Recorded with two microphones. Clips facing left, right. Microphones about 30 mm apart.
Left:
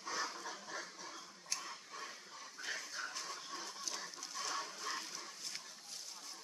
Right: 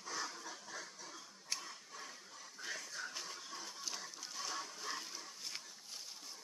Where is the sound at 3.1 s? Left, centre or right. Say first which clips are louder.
Left 2 dB; centre.